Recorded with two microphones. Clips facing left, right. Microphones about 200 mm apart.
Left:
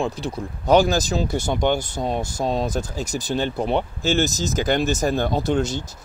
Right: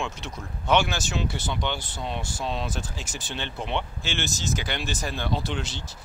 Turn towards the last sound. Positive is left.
turn(degrees=45)  # may be behind; listen again after turning